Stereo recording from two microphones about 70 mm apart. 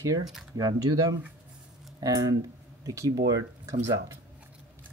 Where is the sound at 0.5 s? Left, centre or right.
Right.